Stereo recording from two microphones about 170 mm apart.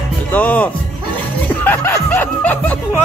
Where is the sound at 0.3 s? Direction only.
10° left (ahead or behind).